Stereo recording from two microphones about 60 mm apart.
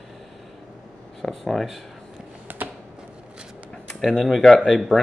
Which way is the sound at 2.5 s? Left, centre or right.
Right.